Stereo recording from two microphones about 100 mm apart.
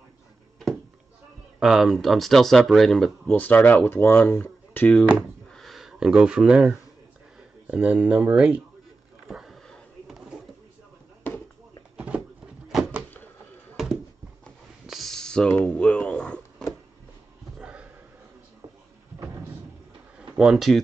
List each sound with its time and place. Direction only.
1.6 s speech: 5° right (ahead or behind)
3.3 s speech: 15° left (ahead or behind)
5.5 s snort: centre (ahead or behind)
7.6 s speech: 15° right (ahead or behind)
9.3 s a sound: centre (ahead or behind)
12.6 s door: 5° right (ahead or behind)
13.8 s a sound: 5° right (ahead or behind)
17.6 s a sound: 10° right (ahead or behind)
20.3 s speech: 5° right (ahead or behind)